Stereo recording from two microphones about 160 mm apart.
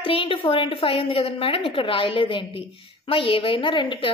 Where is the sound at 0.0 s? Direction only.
35° left (ahead or behind).